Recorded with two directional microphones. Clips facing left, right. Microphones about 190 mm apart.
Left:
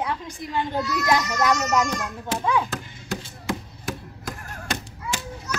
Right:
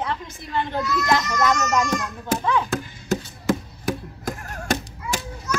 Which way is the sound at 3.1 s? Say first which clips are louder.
Right 7 dB; 45° right (ahead or behind).